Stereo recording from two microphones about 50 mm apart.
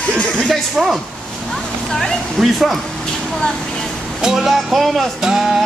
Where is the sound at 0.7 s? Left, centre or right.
Centre.